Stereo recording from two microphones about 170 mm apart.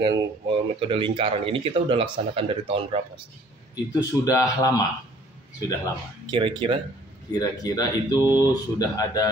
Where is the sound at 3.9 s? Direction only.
20° left (ahead or behind).